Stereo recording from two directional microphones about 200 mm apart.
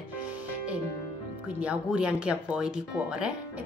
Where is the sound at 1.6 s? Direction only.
5° right (ahead or behind).